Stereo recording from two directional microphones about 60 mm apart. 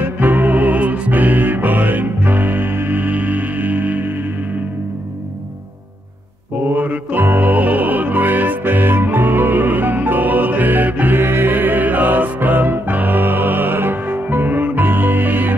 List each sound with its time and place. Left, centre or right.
0.0 s music: right
6.7 s music: right